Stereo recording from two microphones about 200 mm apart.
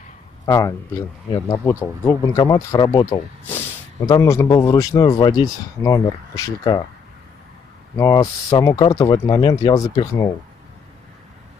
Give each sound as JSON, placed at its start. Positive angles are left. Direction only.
{"t": 0.5, "sound": "speech", "side_deg": 15}
{"t": 8.0, "sound": "speech", "side_deg": 15}